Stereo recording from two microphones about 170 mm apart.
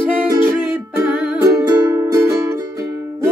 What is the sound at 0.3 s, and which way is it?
Music, 15° right (ahead or behind).